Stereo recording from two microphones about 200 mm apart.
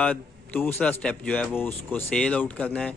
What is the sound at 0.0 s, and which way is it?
A man's voice, 5° left (ahead or behind).